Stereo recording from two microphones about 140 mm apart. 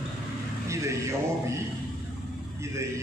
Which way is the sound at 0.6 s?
20° right (ahead or behind).